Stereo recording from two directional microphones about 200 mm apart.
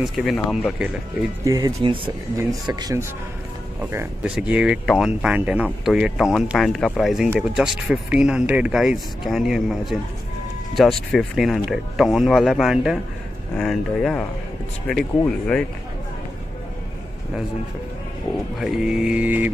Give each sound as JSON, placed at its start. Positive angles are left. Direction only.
{"t": 0.0, "sound": "speech", "side_deg": 0}
{"t": 1.4, "sound": "speech", "side_deg": -20}
{"t": 18.6, "sound": "speech", "side_deg": -5}